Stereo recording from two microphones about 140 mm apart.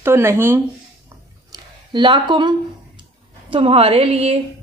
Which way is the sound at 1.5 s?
35° right (ahead or behind).